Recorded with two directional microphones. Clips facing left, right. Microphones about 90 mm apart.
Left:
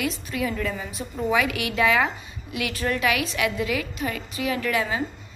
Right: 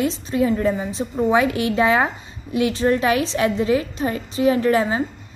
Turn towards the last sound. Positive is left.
turn(degrees=-35)  # may be behind; listen again after turning